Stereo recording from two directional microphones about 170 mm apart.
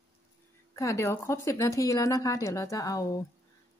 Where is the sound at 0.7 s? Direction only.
15° left (ahead or behind).